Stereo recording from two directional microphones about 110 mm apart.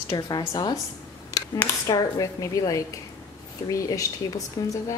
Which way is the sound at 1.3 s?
35° left (ahead or behind).